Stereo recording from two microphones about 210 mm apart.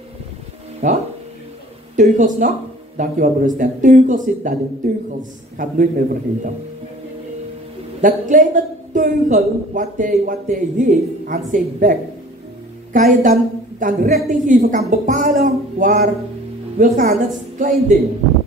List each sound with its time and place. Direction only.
0.8 s a woman's voice: 35° right (ahead or behind)
5.6 s a woman's voice: 40° right (ahead or behind)
8.0 s a woman's voice: 40° right (ahead or behind)